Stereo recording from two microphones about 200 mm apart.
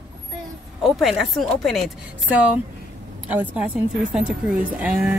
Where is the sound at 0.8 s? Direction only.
Centre (ahead or behind).